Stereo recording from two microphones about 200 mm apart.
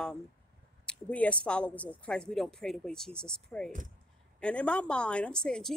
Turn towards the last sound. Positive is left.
turn(degrees=5)  # may be behind; listen again after turning